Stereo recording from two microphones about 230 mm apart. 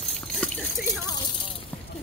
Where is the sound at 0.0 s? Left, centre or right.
Centre.